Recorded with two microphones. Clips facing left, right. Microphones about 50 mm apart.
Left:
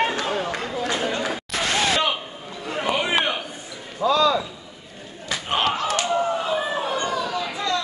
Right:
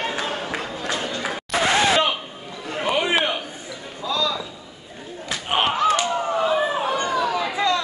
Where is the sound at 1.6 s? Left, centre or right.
Centre.